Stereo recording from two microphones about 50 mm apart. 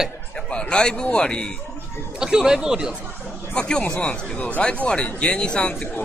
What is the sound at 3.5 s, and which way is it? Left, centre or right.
Speech, centre.